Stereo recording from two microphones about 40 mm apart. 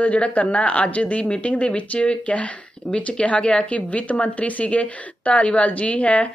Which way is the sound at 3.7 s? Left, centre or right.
Left.